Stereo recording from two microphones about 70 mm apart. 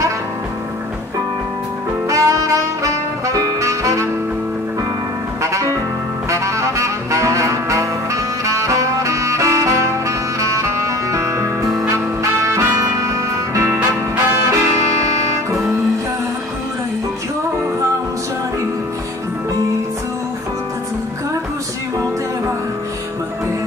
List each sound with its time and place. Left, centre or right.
2.0 s music: right
5.4 s music: right
6.3 s saxophone: right
11.9 s music: right